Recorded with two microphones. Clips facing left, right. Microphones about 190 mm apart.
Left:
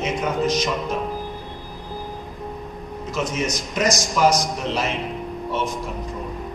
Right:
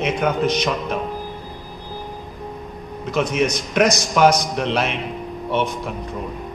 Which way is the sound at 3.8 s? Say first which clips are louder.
Right 4 dB; 65° right (ahead or behind).